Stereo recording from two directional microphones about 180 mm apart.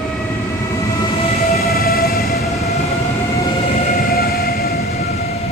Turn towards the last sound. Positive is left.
turn(degrees=60)  # may be behind; listen again after turning